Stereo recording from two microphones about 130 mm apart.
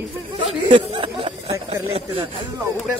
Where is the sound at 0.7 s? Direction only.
40° right (ahead or behind).